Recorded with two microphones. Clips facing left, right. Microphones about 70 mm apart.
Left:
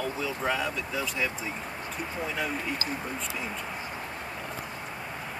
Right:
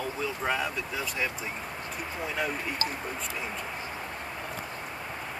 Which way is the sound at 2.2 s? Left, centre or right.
Centre.